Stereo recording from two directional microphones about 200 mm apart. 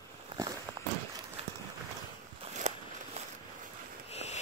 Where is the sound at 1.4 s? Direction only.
30° right (ahead or behind).